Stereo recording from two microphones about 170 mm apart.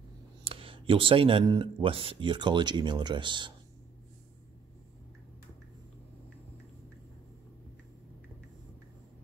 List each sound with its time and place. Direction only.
0.4 s speech: 30° right (ahead or behind)